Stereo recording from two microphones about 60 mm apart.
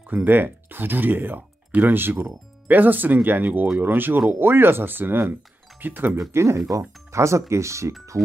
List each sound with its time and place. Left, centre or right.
0.0 s speech: right
6.3 s speech: right